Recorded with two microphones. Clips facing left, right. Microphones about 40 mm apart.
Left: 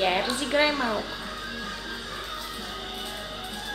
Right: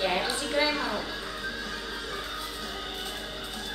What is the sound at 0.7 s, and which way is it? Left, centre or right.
Speech, centre.